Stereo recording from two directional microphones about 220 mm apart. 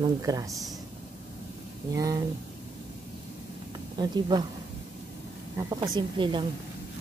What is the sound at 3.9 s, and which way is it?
Speech, 20° right (ahead or behind).